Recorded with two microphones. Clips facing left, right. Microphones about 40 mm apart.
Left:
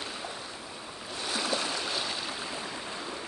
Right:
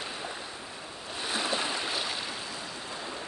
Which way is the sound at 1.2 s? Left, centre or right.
Right.